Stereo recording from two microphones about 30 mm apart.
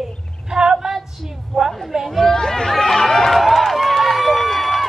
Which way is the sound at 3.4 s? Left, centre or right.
Centre.